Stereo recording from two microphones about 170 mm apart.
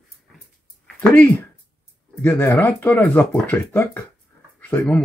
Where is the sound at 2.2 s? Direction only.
10° left (ahead or behind).